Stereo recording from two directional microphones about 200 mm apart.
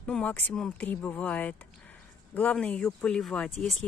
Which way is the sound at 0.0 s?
5° left (ahead or behind).